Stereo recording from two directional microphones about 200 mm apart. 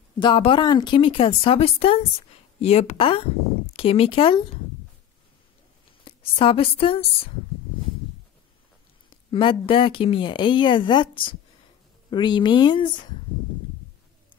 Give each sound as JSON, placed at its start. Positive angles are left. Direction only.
{"t": 0.2, "sound": "speech", "side_deg": 25}
{"t": 6.0, "sound": "speech", "side_deg": 25}
{"t": 9.1, "sound": "speech", "side_deg": 25}